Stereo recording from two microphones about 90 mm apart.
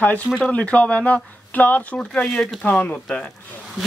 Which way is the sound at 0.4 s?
15° left (ahead or behind).